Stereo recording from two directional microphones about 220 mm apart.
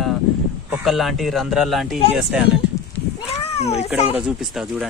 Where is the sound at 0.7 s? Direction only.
Centre (ahead or behind).